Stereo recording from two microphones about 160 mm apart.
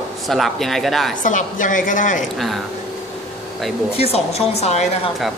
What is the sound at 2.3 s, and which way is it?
Speech, centre (ahead or behind).